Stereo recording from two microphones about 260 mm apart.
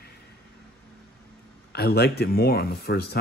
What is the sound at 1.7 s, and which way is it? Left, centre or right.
Speech, left.